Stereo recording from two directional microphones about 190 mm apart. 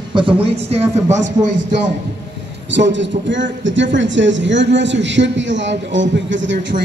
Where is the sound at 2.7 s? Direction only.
70° right (ahead or behind).